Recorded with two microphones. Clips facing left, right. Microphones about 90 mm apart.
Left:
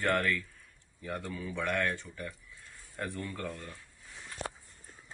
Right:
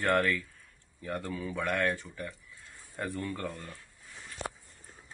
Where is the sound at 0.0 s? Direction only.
5° right (ahead or behind).